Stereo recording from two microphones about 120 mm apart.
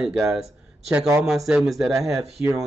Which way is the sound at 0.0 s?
5° right (ahead or behind).